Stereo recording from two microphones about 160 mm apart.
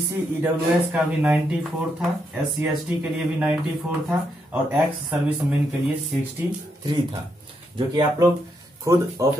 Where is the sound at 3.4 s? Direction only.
5° right (ahead or behind).